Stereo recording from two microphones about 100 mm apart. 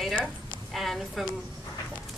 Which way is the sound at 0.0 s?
Centre (ahead or behind).